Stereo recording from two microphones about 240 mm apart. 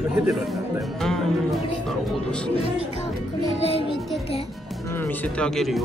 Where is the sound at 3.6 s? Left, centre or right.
Left.